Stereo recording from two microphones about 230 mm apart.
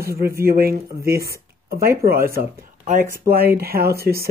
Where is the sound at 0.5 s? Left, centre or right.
Right.